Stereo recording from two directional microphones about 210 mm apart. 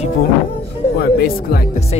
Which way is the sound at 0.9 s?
45° left (ahead or behind).